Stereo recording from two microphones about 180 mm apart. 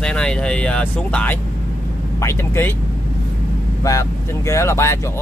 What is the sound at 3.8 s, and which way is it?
Speech, 15° left (ahead or behind).